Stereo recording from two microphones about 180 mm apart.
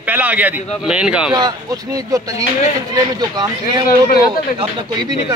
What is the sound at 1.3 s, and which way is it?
Speech, 20° right (ahead or behind).